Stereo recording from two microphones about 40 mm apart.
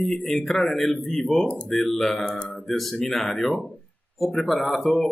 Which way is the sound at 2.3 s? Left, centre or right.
Left.